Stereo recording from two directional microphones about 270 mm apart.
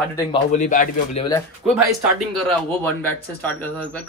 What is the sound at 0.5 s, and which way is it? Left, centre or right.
Speech, left.